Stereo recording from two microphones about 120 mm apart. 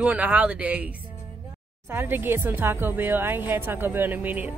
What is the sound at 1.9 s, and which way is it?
Speech, 20° right (ahead or behind).